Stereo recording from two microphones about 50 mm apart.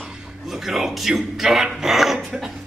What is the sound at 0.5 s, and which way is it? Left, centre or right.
Speech, centre.